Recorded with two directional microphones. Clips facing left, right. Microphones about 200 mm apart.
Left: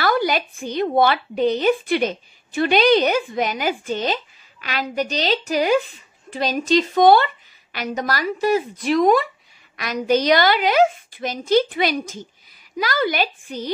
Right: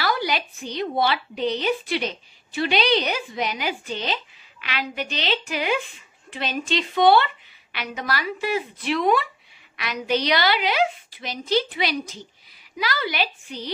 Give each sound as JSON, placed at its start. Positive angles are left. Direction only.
{"t": 0.0, "sound": "a woman's voice", "side_deg": 50}